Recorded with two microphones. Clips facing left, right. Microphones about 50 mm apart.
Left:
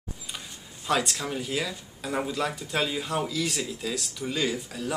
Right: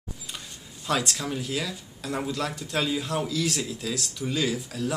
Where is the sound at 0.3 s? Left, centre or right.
Centre.